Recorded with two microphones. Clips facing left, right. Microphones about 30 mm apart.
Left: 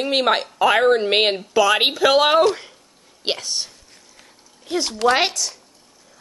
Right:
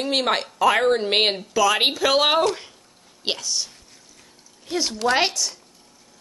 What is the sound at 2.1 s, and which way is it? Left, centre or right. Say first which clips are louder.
Speech: left 3 dB; centre.